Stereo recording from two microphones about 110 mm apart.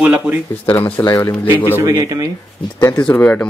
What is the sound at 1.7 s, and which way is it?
Speech, 30° right (ahead or behind).